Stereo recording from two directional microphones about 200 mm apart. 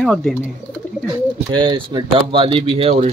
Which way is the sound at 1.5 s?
25° right (ahead or behind).